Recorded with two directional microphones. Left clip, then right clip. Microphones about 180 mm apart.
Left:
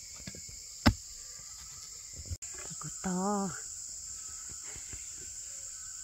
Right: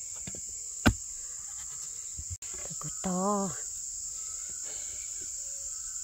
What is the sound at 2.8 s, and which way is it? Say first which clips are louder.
Cricket: right 3 dB; 55° right (ahead or behind).